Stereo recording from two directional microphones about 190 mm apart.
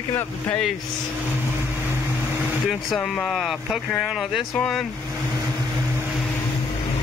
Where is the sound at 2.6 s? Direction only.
Centre (ahead or behind).